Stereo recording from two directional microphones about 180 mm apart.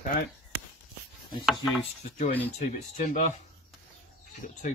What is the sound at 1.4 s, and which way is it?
Chopping, centre (ahead or behind).